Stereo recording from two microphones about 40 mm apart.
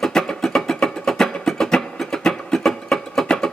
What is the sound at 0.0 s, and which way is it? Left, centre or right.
Music, centre.